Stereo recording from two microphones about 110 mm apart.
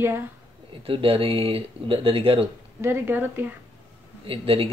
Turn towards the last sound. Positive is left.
turn(degrees=-55)  # may be behind; listen again after turning